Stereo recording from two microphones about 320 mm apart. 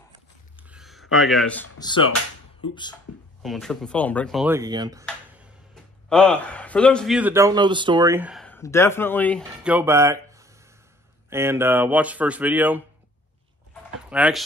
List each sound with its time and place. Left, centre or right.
0.6 s a sound: centre
1.1 s speech: centre
1.8 s speech: centre
3.4 s speech: centre
6.0 s speech: centre
14.0 s speech: centre